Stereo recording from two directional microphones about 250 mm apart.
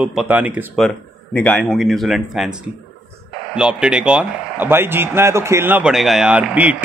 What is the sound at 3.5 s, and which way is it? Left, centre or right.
Speech, centre.